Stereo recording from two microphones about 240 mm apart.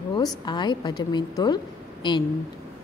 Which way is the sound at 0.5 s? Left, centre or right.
Centre.